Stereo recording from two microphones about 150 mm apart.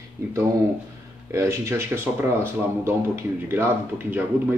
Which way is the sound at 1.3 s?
20° right (ahead or behind).